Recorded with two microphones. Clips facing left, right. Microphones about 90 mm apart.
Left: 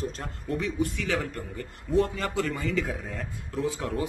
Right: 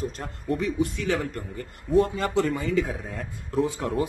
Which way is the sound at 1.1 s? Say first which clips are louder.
Right 3 dB; 5° right (ahead or behind).